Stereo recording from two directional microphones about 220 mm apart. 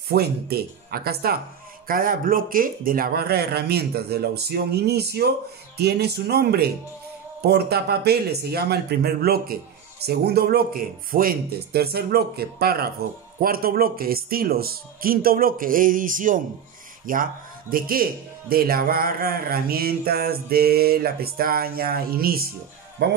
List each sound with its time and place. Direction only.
0.1 s a man's voice: 45° right (ahead or behind)